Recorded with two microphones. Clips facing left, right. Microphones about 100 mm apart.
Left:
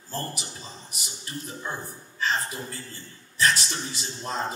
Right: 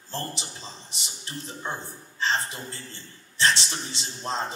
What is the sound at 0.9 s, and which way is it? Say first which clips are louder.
Speech: even; 25° right (ahead or behind).